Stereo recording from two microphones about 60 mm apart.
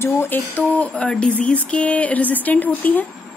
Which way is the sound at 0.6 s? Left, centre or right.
Left.